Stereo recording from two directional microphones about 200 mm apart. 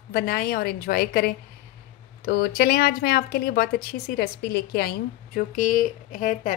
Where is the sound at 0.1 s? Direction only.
50° left (ahead or behind).